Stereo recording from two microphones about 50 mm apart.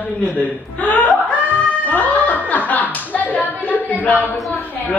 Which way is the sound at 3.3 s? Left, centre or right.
Left.